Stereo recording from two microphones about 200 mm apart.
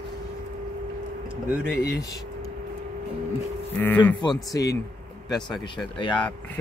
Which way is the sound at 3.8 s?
10° left (ahead or behind).